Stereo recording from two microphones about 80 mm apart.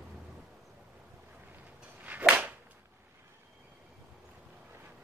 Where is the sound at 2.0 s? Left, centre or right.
Centre.